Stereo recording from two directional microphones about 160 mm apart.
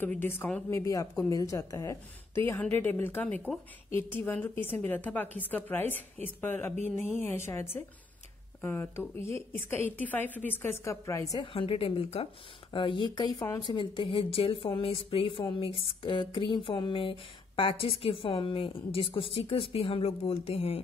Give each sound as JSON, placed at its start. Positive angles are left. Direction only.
{"t": 0.0, "sound": "a woman's voice", "side_deg": 10}
{"t": 11.4, "sound": "speech", "side_deg": 35}